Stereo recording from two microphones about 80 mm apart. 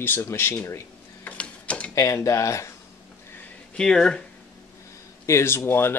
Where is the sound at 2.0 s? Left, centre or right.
Left.